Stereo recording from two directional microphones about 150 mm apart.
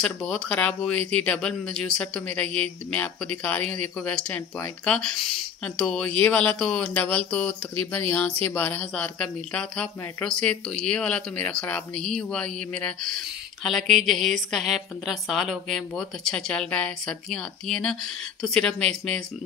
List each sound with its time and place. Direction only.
0.0 s speech: 5° left (ahead or behind)